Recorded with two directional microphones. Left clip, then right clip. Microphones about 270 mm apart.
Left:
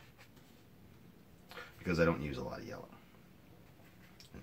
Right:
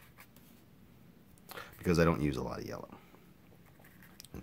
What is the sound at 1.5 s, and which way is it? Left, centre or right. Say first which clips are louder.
Speech: right 5 dB; right.